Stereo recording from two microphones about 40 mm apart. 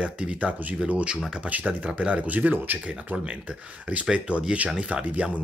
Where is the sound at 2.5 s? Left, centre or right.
Right.